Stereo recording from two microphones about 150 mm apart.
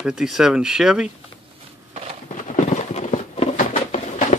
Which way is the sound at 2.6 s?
50° left (ahead or behind).